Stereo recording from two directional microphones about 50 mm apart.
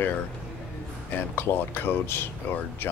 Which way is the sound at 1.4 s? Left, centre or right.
Left.